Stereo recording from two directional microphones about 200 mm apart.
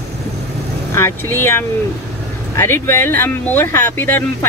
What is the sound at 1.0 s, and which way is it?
Speech, 10° left (ahead or behind).